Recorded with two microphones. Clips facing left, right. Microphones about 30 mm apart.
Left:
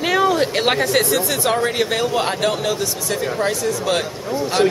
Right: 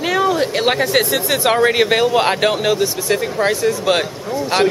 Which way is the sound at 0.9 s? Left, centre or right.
Right.